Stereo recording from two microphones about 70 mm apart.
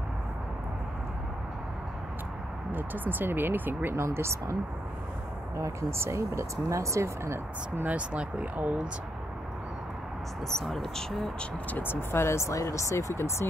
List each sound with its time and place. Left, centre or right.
2.7 s speech: right
3.9 s speech: right
5.6 s speech: right
7.7 s speech: right
10.6 s speech: centre
11.7 s speech: left